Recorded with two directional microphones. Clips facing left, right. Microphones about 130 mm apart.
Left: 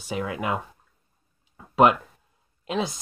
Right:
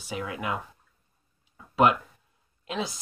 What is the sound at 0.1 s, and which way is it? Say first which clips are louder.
Speech: left 4 dB; 25° left (ahead or behind).